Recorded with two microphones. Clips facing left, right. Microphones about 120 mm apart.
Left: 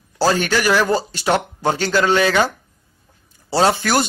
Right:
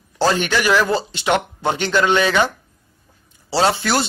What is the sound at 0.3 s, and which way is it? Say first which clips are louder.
A man's voice: left 1 dB; 40° left (ahead or behind).